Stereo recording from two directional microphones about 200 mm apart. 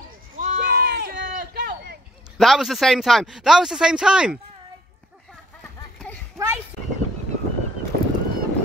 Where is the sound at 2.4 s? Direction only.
Centre (ahead or behind).